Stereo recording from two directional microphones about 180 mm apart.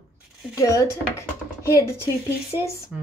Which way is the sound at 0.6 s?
20° left (ahead or behind).